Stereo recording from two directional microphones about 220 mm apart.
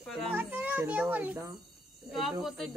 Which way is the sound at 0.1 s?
5° right (ahead or behind).